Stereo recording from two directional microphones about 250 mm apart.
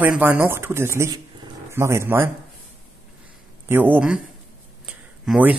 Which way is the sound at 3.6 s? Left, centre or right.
Centre.